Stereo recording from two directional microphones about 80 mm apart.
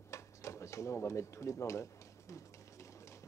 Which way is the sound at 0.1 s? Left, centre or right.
Left.